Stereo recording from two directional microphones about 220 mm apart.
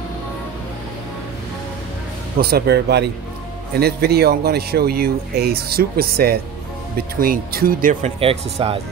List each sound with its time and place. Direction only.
2.3 s speech: 45° right (ahead or behind)
8.2 s speech: 25° right (ahead or behind)